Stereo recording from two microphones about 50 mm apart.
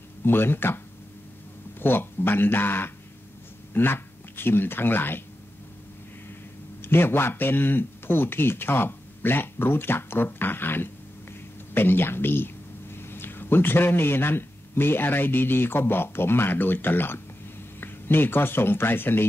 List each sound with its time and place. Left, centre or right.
0.2 s speech: left
1.8 s speech: left
6.8 s a man's voice: left